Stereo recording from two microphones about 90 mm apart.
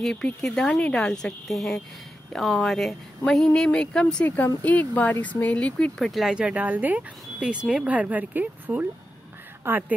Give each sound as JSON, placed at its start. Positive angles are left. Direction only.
{"t": 0.0, "sound": "speech", "side_deg": 5}
{"t": 5.9, "sound": "a woman's voice", "side_deg": 0}